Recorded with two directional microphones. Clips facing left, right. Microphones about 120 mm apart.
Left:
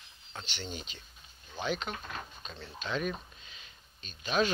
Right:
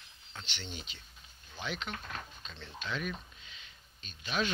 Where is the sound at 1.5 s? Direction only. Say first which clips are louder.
Left 5 dB; 20° left (ahead or behind).